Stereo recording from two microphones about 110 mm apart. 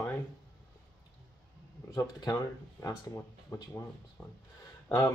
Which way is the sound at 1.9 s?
35° left (ahead or behind).